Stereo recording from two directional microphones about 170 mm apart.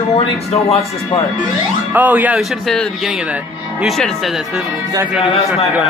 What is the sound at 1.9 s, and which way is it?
Speech, 10° right (ahead or behind).